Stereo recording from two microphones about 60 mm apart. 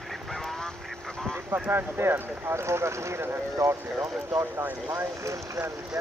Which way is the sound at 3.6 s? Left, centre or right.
Right.